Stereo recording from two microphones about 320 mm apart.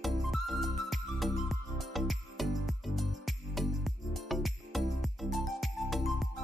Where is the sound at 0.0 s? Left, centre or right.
Centre.